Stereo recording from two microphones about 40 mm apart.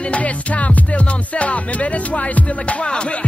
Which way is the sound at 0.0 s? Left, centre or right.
Left.